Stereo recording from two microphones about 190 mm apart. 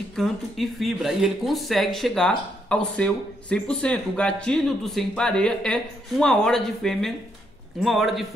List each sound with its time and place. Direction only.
0.1 s speech: centre (ahead or behind)